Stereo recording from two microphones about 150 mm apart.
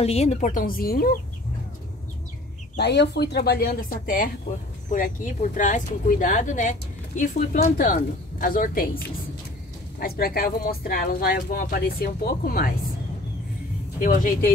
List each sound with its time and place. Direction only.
0.0 s speech: 45° left (ahead or behind); by 1.1 s 85° left
2.8 s speech: 90° left; by 8.8 s 65° left (ahead or behind)
9.9 s speech: 80° left
14.0 s speech: 65° left (ahead or behind)